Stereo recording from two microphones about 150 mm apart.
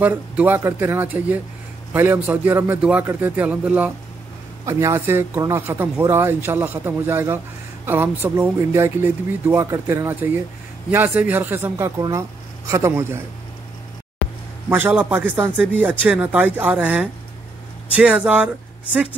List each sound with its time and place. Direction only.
0.0 s speech: 10° right (ahead or behind)
4.6 s speech: 20° right (ahead or behind)
14.7 s speech: 15° right (ahead or behind)